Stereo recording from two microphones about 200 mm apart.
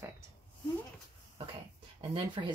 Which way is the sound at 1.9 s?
25° right (ahead or behind).